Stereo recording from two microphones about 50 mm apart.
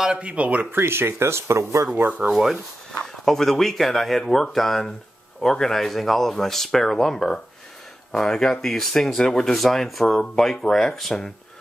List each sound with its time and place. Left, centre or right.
0.2 s speech: right
0.7 s speech: right
2.3 s speech: centre